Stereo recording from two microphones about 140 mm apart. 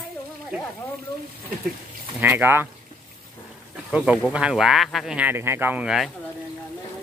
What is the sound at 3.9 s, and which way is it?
Speech, 10° right (ahead or behind).